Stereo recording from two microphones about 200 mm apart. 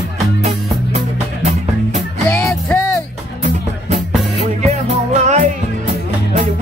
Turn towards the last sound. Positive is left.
turn(degrees=-35)  # may be behind; listen again after turning